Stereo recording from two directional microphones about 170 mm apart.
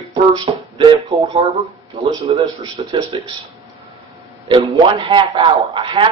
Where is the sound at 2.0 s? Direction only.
25° right (ahead or behind).